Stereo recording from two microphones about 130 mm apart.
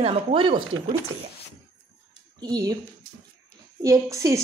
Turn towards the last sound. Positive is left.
turn(degrees=-25)  # may be behind; listen again after turning